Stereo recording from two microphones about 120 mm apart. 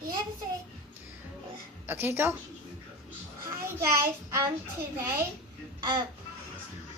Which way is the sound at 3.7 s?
20° right (ahead or behind).